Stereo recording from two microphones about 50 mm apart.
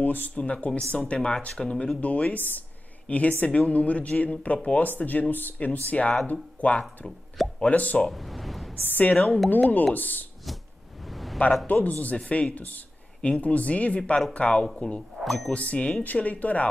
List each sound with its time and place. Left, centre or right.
0.0 s a sound: left
0.4 s speech: left
2.0 s speech: left
8.1 s a sound: centre
8.8 s a woman's voice: left
11.1 s a sound: centre
11.6 s speech: left
15.0 s speech: centre
15.5 s speech: left